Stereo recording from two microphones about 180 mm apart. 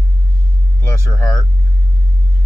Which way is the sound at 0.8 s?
15° left (ahead or behind).